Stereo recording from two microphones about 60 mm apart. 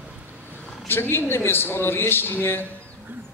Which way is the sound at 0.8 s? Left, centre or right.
Left.